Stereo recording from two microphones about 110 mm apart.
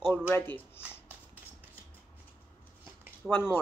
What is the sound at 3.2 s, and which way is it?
Speech, 20° left (ahead or behind).